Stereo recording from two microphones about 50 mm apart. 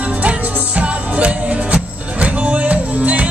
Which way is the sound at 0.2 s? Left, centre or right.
Right.